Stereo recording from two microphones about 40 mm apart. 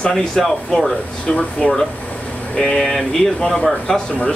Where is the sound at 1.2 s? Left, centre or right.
Left.